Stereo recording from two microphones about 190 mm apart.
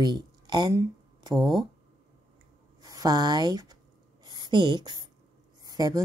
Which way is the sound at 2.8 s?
20° right (ahead or behind).